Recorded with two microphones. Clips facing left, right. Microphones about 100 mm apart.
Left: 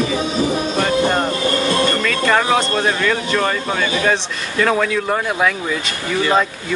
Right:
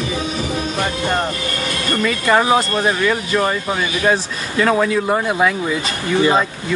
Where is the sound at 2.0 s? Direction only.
15° right (ahead or behind).